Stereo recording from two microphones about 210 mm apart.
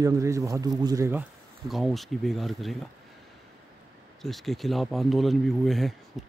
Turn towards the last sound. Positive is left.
turn(degrees=0)  # may be behind; listen again after turning